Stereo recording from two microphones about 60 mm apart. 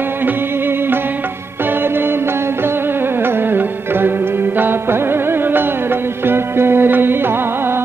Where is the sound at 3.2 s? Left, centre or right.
Right.